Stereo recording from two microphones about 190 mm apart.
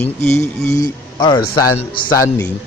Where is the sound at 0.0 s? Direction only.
10° left (ahead or behind).